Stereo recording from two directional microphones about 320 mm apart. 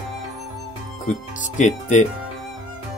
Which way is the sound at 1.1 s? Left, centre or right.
Left.